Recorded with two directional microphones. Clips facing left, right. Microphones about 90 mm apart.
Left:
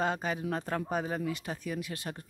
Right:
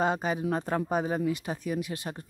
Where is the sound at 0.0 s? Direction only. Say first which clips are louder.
Right 4 dB; 20° right (ahead or behind).